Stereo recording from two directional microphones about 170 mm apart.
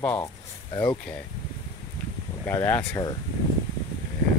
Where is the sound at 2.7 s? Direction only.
10° left (ahead or behind).